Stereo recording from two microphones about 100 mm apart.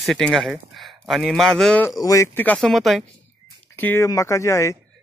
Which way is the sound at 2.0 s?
35° left (ahead or behind).